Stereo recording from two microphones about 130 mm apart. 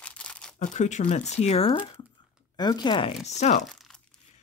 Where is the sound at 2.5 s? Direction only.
35° left (ahead or behind).